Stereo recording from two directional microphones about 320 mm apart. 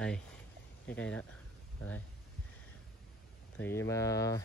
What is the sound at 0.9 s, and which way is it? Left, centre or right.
Speech, centre.